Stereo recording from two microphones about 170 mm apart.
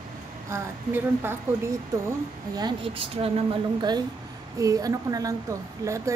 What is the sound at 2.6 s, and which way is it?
Speech, 30° right (ahead or behind).